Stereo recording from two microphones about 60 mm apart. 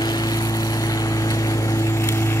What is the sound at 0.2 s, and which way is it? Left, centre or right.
Vehicle, left.